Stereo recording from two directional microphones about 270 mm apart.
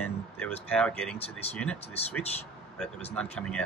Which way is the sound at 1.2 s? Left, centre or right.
Left.